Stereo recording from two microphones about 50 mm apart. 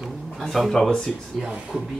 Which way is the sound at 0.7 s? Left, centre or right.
Centre.